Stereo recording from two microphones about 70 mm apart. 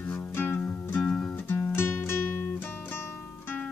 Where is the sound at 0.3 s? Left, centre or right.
Left.